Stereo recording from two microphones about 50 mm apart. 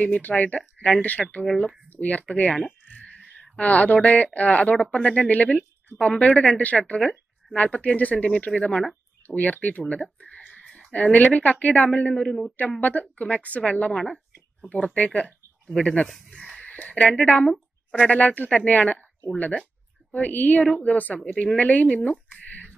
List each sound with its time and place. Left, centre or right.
0.0 s a woman's voice: left
1.2 s speech: centre
1.9 s a woman's voice: left
2.9 s a sound: left
3.5 s a woman's voice: left
16.6 s a sound: left
16.9 s a woman's voice: left